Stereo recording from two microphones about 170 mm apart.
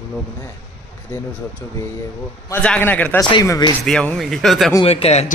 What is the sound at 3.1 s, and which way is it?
Speech, 25° left (ahead or behind).